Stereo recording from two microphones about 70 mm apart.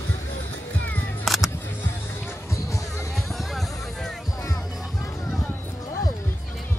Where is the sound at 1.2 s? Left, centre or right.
Centre.